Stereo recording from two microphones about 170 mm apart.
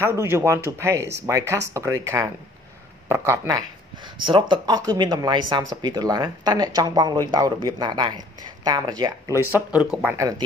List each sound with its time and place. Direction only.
0.0 s speech: 15° right (ahead or behind)
9.4 s speech: 10° right (ahead or behind)